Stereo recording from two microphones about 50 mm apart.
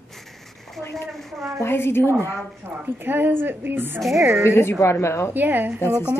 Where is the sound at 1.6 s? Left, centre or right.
Left.